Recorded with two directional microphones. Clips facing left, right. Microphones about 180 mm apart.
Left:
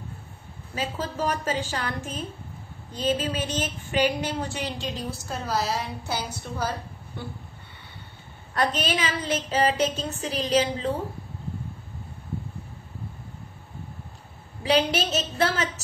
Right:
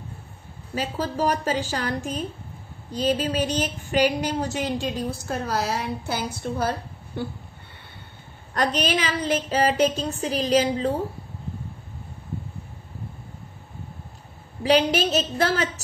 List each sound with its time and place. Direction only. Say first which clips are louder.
0.7 s a woman's voice: right 3 dB; 40° right (ahead or behind); by 6.7 s 55° right (ahead or behind)
8.5 s a woman's voice: right 2 dB; 45° right (ahead or behind)
14.6 s a woman's voice: right 3 dB; 40° right (ahead or behind)